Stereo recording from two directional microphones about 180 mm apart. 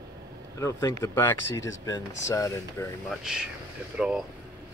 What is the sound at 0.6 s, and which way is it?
Speech, 15° left (ahead or behind).